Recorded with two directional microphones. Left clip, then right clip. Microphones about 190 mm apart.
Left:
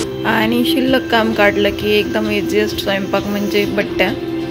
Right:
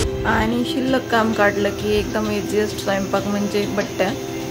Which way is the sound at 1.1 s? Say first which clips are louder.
Left 2 dB; 10° left (ahead or behind).